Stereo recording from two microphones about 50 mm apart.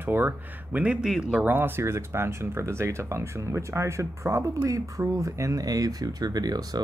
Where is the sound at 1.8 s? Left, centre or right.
Right.